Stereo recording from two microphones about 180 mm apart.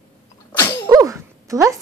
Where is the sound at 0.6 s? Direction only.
25° left (ahead or behind).